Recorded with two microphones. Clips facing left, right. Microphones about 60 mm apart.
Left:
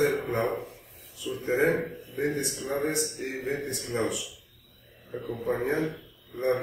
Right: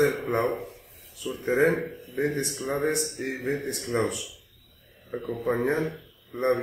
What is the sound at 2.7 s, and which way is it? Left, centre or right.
Speech, right.